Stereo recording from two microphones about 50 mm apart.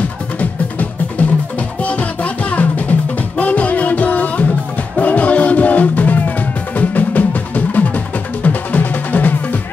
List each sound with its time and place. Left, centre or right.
0.4 s music: left